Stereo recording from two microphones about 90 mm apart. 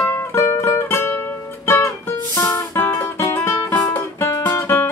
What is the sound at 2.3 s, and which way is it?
Music, 35° left (ahead or behind).